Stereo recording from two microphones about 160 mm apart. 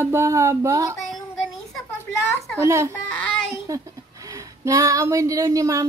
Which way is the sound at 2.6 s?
20° right (ahead or behind).